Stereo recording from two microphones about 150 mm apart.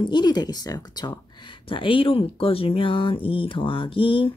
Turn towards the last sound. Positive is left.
turn(degrees=35)  # may be behind; listen again after turning